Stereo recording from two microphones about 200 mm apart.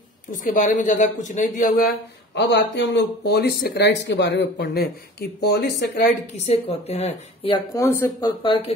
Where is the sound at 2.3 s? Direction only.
60° left (ahead or behind).